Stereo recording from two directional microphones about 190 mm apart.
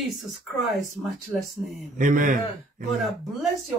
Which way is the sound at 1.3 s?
5° right (ahead or behind).